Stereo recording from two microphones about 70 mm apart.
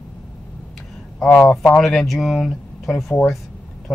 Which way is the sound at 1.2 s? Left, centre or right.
Centre.